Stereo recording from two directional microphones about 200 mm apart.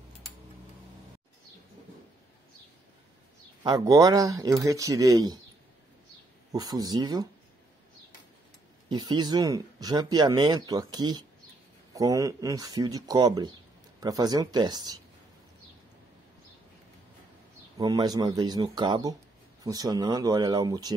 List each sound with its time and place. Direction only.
3.6 s speech: 15° right (ahead or behind)
6.5 s speech: 20° right (ahead or behind)
8.8 s speech: 20° right (ahead or behind)
17.7 s speech: 20° right (ahead or behind)